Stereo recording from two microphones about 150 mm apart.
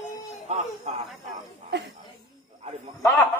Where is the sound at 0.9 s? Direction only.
50° right (ahead or behind).